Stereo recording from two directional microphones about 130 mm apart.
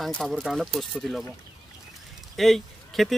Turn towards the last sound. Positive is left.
turn(degrees=0)  # may be behind; listen again after turning